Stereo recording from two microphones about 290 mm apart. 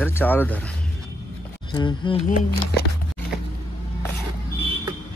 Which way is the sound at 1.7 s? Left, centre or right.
Centre.